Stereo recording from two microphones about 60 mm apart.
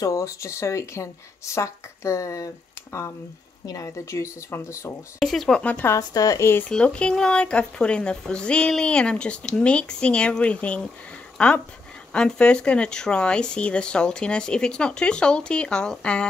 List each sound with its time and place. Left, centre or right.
0.0 s speech: left
3.6 s speech: left
4.5 s speech: left
5.2 s speech: centre
5.6 s speech: left
5.9 s speech: left
6.7 s speech: centre